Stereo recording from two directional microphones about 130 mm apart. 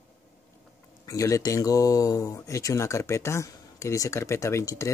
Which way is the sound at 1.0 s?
25° left (ahead or behind).